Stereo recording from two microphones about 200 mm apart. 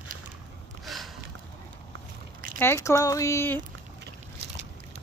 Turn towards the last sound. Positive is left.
turn(degrees=10)  # may be behind; listen again after turning